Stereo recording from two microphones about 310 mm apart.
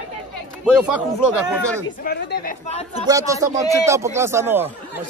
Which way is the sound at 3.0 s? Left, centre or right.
Centre.